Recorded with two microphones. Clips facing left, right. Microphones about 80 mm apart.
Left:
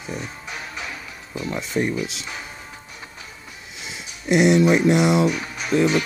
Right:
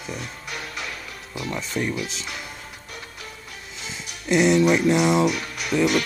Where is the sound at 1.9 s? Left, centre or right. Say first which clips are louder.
Left 2 dB; centre.